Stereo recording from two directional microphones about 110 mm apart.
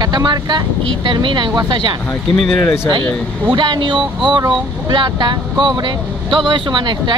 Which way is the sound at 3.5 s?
45° right (ahead or behind).